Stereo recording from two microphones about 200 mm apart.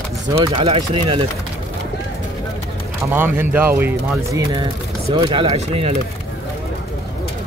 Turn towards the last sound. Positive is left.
turn(degrees=-30)  # may be behind; listen again after turning